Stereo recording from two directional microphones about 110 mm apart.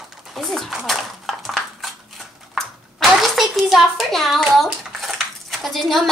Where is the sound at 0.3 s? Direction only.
Centre (ahead or behind).